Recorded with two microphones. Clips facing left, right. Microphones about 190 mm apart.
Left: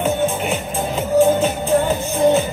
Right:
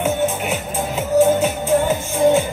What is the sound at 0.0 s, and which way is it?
Music, 5° right (ahead or behind).